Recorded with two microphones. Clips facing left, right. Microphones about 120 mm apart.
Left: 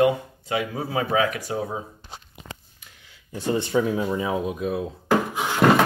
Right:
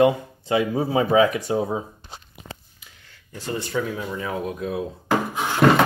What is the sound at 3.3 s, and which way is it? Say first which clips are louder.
Speech: left 4 dB; 20° left (ahead or behind).